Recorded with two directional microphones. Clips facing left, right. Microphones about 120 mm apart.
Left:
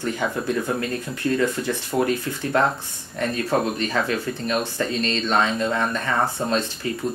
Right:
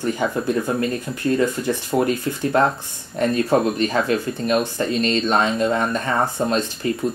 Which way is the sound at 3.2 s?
30° right (ahead or behind).